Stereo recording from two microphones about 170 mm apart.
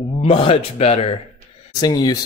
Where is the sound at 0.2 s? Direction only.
35° left (ahead or behind).